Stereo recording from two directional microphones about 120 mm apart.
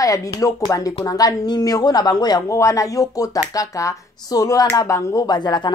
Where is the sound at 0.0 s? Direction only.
30° left (ahead or behind).